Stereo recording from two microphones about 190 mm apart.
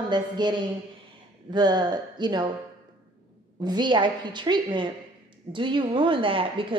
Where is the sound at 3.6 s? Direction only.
25° right (ahead or behind).